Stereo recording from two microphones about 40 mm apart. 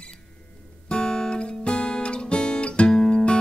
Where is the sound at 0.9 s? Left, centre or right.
Left.